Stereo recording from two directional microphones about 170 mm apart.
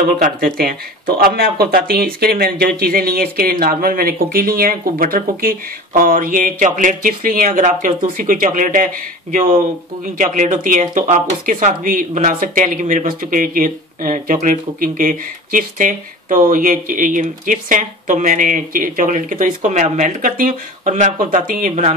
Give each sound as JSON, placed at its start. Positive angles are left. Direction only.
{"t": 0.2, "sound": "speech", "side_deg": -60}
{"t": 10.1, "sound": "speech", "side_deg": -50}